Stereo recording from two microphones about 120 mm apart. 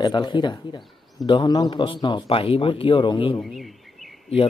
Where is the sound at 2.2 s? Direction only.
50° left (ahead or behind).